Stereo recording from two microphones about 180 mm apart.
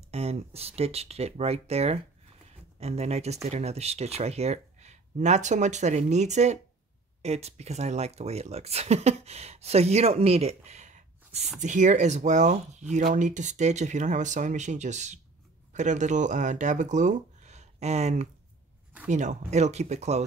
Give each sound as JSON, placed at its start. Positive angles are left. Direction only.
{"t": 0.1, "sound": "speech", "side_deg": -35}